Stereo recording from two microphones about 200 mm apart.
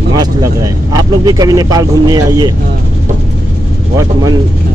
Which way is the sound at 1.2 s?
15° right (ahead or behind).